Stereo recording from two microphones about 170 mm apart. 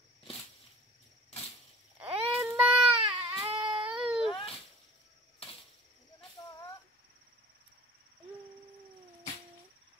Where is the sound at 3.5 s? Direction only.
30° right (ahead or behind).